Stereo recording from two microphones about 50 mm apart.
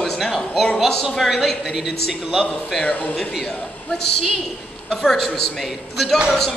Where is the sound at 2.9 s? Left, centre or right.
Left.